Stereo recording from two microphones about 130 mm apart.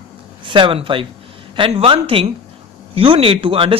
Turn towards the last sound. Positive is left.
turn(degrees=-45)  # may be behind; listen again after turning